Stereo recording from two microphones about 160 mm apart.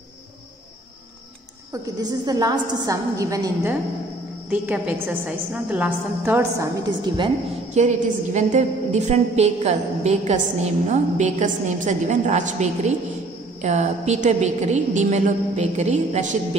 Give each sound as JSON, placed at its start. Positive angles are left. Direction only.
{"t": 1.7, "sound": "a woman's voice", "side_deg": -25}
{"t": 4.5, "sound": "a woman's voice", "side_deg": -10}
{"t": 7.7, "sound": "a woman's voice", "side_deg": -45}